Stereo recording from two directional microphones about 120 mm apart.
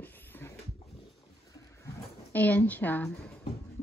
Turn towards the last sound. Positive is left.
turn(degrees=15)  # may be behind; listen again after turning